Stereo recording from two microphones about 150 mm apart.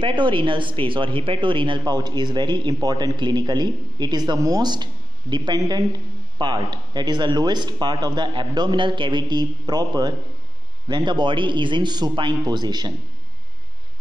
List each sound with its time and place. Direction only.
0.0 s speech: 30° right (ahead or behind)